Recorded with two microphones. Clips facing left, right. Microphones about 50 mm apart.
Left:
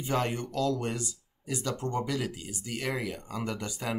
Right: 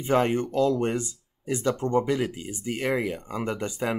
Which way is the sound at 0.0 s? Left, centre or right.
Right.